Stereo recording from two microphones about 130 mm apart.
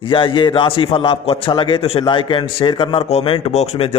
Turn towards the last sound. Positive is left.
turn(degrees=50)  # may be behind; listen again after turning